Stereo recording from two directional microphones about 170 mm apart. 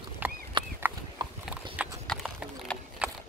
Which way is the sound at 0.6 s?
25° right (ahead or behind).